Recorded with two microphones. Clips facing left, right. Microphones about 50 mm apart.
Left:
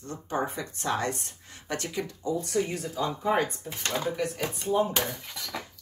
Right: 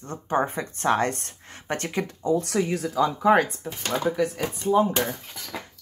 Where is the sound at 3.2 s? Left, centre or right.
Right.